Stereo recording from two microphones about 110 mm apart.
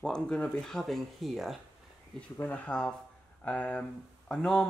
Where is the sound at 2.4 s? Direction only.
10° left (ahead or behind).